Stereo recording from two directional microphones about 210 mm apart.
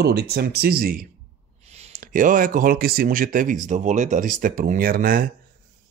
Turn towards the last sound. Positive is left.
turn(degrees=-40)  # may be behind; listen again after turning